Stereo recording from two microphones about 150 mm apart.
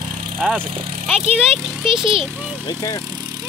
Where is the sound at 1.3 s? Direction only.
5° right (ahead or behind).